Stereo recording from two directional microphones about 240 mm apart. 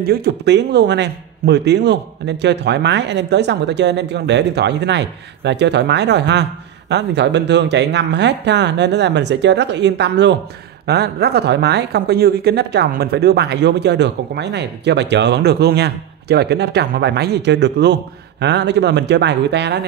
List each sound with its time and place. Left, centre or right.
0.0 s a woman's voice: right